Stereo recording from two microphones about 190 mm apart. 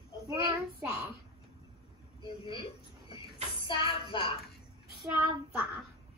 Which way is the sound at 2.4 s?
30° left (ahead or behind).